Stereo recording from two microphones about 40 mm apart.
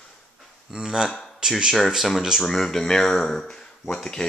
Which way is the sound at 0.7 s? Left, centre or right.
Centre.